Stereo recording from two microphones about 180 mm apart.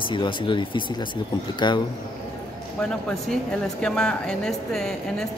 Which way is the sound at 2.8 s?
5° left (ahead or behind).